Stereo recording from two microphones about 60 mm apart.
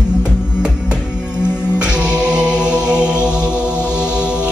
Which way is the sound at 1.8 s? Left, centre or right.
Centre.